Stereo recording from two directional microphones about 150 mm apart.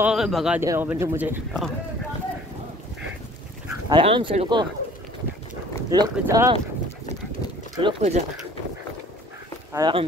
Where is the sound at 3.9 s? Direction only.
35° right (ahead or behind).